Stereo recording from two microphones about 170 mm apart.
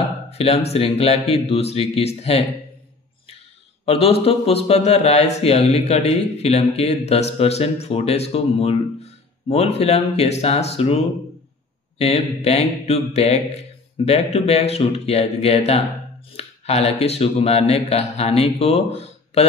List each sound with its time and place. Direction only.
0.3 s speech: 35° left (ahead or behind)
3.8 s speech: 35° left (ahead or behind)
12.0 s speech: 35° left (ahead or behind)